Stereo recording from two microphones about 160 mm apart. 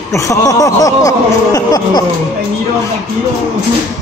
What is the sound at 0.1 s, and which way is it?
Speech, 20° left (ahead or behind).